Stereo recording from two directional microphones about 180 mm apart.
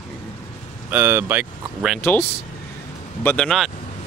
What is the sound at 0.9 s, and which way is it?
Speech, 10° right (ahead or behind).